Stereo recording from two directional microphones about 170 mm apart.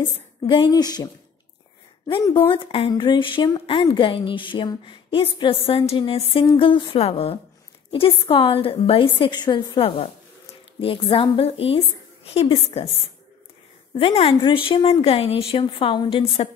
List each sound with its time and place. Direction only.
0.0 s speech: 30° left (ahead or behind)
2.2 s speech: 20° left (ahead or behind)
2.5 s a woman's voice: 30° left (ahead or behind)
13.9 s a woman's voice: 35° left (ahead or behind)